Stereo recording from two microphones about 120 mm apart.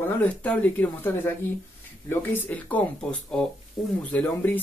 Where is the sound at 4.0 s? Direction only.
10° left (ahead or behind).